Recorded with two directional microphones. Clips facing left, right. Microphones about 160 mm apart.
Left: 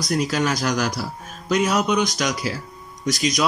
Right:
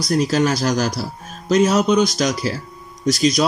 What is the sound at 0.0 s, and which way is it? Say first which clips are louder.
Speech: right 4 dB; 35° right (ahead or behind).